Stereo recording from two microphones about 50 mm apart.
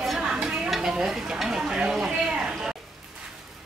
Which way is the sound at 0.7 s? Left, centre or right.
Centre.